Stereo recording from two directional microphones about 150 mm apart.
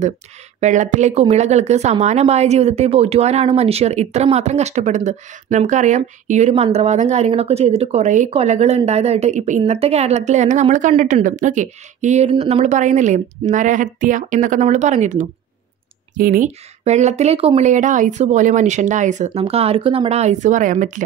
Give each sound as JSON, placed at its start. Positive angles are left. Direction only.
{"t": 0.6, "sound": "speech", "side_deg": -55}
{"t": 16.2, "sound": "speech", "side_deg": -70}
{"t": 16.8, "sound": "speech", "side_deg": -50}